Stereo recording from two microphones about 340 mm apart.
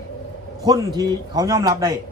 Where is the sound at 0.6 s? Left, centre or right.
Centre.